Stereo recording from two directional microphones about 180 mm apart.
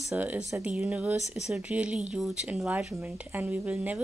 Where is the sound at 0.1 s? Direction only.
10° right (ahead or behind).